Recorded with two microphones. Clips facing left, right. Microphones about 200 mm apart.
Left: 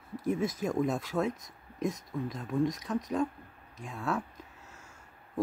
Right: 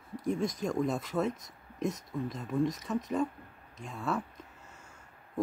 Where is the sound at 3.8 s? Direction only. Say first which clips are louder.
Even; centre (ahead or behind).